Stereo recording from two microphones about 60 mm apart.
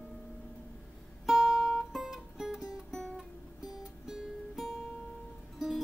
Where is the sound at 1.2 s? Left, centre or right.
Centre.